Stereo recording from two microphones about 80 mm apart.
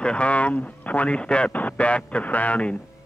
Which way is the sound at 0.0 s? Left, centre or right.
Centre.